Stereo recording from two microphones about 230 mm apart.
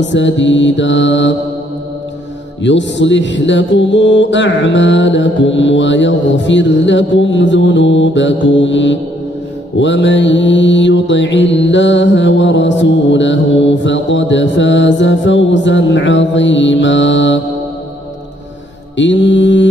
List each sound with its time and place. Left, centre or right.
0.0 s mantra: left
2.6 s mantra: left
18.9 s mantra: left